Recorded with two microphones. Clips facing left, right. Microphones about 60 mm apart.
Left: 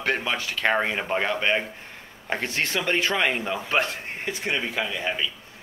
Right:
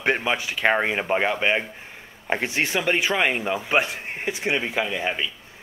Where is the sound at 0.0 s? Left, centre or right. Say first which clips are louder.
Right 3 dB; centre.